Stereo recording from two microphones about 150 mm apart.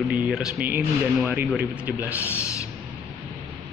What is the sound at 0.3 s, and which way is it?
Speech, 5° right (ahead or behind).